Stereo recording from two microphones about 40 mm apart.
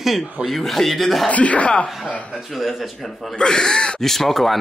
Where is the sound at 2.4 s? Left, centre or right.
Centre.